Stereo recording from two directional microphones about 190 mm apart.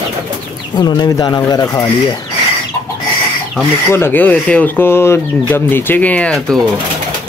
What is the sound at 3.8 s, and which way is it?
Speech, 10° left (ahead or behind).